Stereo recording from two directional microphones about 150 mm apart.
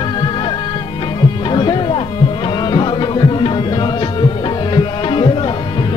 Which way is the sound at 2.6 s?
30° left (ahead or behind).